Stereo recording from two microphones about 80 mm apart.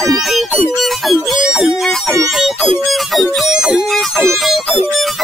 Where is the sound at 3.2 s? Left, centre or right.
Centre.